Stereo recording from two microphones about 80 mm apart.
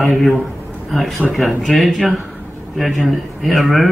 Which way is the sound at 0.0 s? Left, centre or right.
Centre.